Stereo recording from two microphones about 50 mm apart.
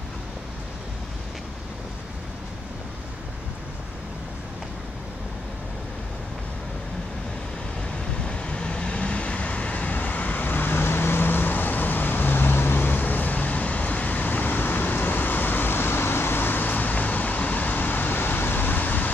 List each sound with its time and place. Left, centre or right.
8.3 s vehicle: left